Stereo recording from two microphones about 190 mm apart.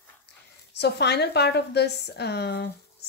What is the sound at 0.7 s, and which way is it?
Speech, 60° left (ahead or behind).